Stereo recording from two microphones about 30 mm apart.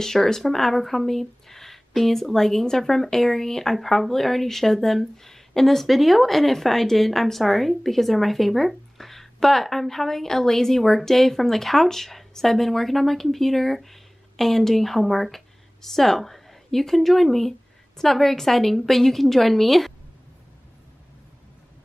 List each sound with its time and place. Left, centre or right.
0.0 s speech: centre